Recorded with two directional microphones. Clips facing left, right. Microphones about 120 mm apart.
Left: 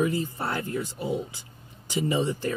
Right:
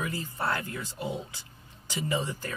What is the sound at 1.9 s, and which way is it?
Speech, 20° left (ahead or behind).